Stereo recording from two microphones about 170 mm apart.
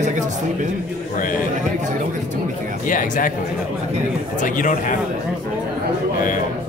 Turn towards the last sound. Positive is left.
turn(degrees=50)  # may be behind; listen again after turning